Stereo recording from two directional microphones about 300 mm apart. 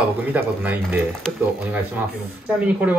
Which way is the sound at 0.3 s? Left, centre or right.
Centre.